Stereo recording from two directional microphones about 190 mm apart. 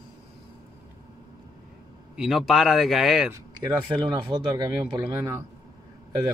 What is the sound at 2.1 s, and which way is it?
Speech, centre (ahead or behind).